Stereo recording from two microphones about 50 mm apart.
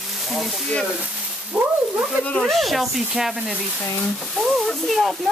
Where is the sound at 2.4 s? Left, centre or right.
Centre.